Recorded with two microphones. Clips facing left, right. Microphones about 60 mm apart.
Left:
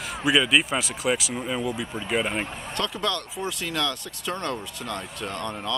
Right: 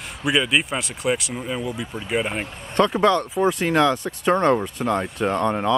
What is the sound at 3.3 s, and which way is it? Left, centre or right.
Speech, right.